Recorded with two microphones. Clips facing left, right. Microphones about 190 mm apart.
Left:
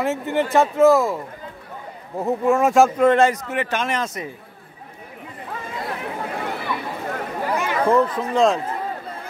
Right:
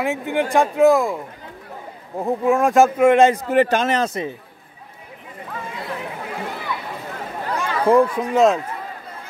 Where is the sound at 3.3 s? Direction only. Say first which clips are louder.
Right 7 dB; 35° right (ahead or behind).